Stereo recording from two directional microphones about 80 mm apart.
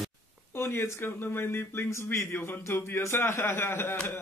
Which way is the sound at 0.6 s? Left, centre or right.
Left.